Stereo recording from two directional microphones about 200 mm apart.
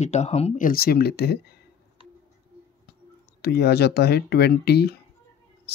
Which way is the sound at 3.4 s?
55° left (ahead or behind).